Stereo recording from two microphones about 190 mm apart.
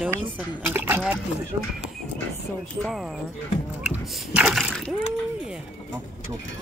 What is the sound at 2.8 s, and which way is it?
Speech, centre (ahead or behind).